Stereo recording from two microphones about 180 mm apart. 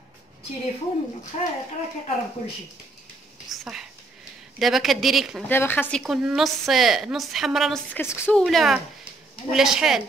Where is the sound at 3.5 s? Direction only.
Centre (ahead or behind).